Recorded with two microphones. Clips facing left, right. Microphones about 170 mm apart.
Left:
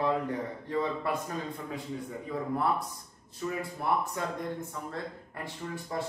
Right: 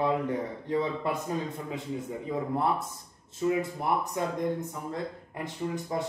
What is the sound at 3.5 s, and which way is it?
A man's voice, 20° right (ahead or behind).